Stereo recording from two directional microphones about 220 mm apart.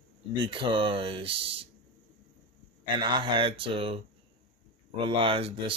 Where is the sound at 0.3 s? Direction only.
20° right (ahead or behind).